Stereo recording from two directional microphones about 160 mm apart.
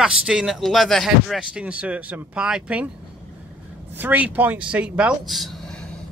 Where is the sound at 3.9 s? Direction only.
10° right (ahead or behind).